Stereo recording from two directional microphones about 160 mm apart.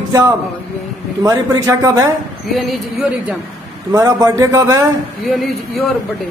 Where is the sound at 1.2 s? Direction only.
20° right (ahead or behind).